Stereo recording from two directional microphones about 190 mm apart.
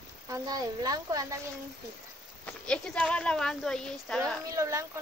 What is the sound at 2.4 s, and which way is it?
Speech, 5° left (ahead or behind).